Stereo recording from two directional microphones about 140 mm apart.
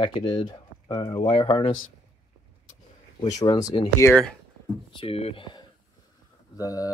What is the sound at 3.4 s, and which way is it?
Speech, 30° left (ahead or behind).